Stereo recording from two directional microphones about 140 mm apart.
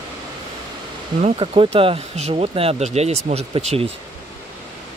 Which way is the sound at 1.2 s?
40° right (ahead or behind).